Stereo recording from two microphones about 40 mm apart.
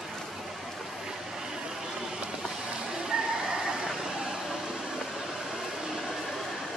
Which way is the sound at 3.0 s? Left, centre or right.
Centre.